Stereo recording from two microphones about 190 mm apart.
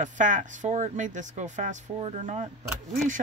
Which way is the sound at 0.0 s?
40° right (ahead or behind).